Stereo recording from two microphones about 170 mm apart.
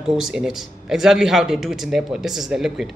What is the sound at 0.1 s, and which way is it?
Speech, 5° right (ahead or behind).